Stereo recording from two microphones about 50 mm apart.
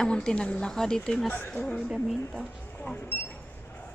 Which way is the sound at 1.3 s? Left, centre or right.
Left.